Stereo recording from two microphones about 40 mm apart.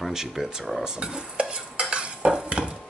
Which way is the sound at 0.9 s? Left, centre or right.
Right.